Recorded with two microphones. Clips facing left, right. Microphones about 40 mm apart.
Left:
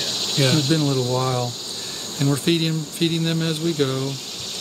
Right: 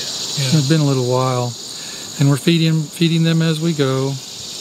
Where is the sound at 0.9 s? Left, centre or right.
Centre.